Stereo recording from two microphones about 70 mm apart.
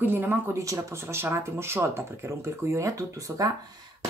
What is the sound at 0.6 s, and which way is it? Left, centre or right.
Speech, right.